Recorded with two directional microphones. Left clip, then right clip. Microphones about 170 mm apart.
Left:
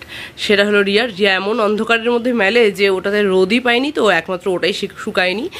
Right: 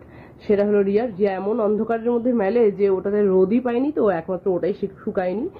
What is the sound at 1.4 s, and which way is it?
Speech, 35° left (ahead or behind).